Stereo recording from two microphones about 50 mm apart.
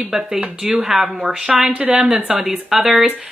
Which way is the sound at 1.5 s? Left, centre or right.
Right.